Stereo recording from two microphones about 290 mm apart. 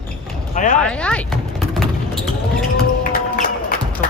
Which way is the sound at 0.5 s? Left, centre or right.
Left.